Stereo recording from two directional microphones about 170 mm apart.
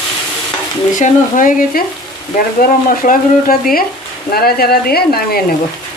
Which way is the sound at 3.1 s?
55° left (ahead or behind).